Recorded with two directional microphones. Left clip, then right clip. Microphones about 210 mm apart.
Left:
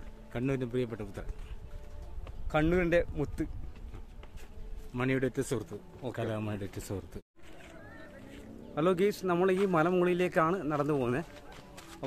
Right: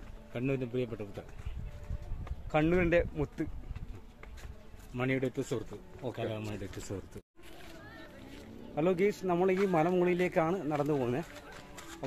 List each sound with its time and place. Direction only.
0.3 s a man's voice: 20° left (ahead or behind)
2.5 s speech: centre (ahead or behind)
4.9 s a man's voice: 20° left (ahead or behind); by 7.0 s 35° left (ahead or behind)
8.7 s a man's voice: 5° left (ahead or behind)